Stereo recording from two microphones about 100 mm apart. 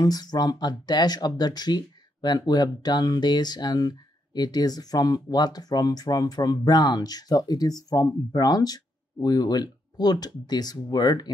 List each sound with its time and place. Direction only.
0.0 s speech: 40° left (ahead or behind)